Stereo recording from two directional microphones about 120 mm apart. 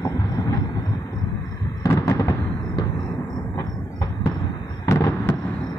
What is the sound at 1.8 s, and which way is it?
Fireworks, 30° left (ahead or behind).